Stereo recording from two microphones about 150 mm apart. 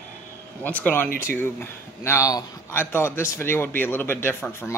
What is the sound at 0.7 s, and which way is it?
A man's voice, 10° left (ahead or behind).